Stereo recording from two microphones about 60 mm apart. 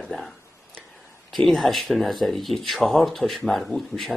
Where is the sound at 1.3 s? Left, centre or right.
Centre.